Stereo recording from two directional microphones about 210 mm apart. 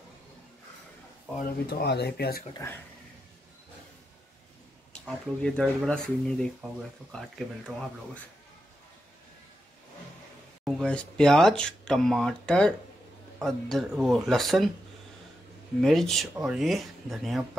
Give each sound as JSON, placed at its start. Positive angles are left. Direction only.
{"t": 1.4, "sound": "speech", "side_deg": 50}
{"t": 2.5, "sound": "speech", "side_deg": 15}
{"t": 5.0, "sound": "speech", "side_deg": 5}
{"t": 10.6, "sound": "speech", "side_deg": 0}
{"t": 15.8, "sound": "speech", "side_deg": 0}